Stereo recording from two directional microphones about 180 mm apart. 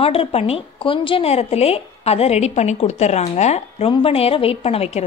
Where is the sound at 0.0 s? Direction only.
30° left (ahead or behind).